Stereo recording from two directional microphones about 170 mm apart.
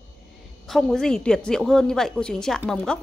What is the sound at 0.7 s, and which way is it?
A woman's voice, centre (ahead or behind).